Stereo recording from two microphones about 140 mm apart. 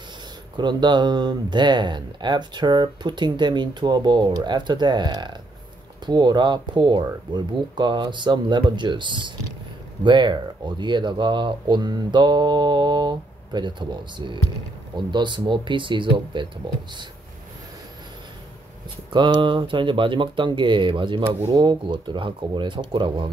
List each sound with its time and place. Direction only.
0.6 s speech: 30° right (ahead or behind)
19.1 s speech: 35° right (ahead or behind)